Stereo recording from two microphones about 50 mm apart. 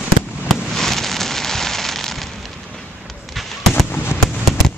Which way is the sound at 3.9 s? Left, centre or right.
Left.